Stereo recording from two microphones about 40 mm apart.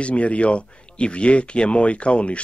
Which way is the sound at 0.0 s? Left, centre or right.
Left.